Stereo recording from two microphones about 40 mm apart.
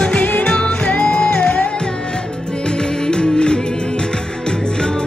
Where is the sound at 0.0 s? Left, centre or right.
Left.